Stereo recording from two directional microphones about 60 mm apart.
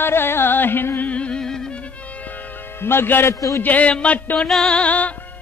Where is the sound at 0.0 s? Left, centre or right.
Left.